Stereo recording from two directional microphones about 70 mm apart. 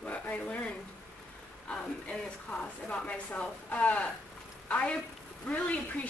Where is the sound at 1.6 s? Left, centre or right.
Centre.